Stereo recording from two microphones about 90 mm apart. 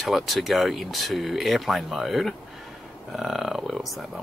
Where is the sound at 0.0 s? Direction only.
Centre (ahead or behind).